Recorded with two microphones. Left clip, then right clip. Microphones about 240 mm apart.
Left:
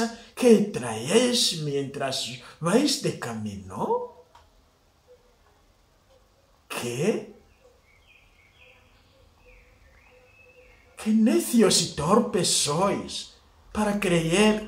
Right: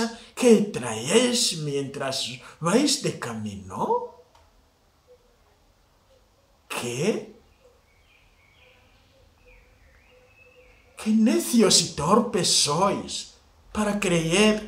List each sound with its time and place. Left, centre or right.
0.0 s speech: centre
6.7 s speech: centre
11.0 s speech: centre